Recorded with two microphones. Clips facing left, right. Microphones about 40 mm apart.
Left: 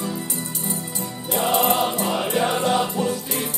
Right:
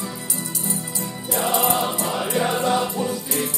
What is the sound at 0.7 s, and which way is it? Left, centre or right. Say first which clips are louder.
Music: right 1 dB; left.